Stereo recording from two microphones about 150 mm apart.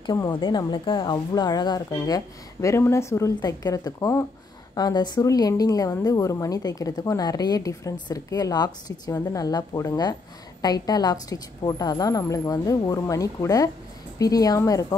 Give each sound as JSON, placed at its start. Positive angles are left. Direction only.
{"t": 0.0, "sound": "a woman's voice", "side_deg": 30}